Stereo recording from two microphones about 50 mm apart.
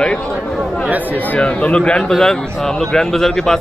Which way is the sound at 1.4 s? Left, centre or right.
Left.